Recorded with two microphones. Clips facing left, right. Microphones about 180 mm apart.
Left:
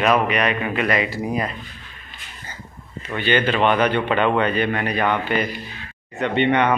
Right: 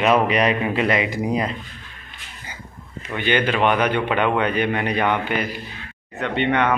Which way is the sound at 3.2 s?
15° right (ahead or behind).